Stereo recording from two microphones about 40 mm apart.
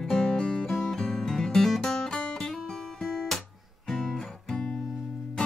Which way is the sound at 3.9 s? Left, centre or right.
Centre.